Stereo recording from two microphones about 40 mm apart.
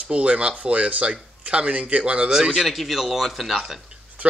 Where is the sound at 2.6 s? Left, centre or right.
Centre.